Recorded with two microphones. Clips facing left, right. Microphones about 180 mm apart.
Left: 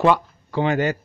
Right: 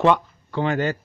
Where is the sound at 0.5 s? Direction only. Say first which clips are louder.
Left 2 dB; 15° left (ahead or behind).